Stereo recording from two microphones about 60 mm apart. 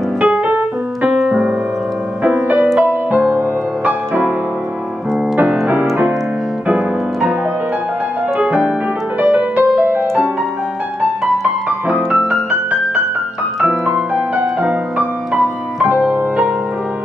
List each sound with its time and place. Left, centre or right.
0.2 s music: right
1.2 s music: centre
2.2 s music: centre
2.5 s music: right
5.3 s piano: centre
6.7 s music: centre
8.4 s music: centre; by 10.2 s right
11.9 s music: centre
13.8 s music: centre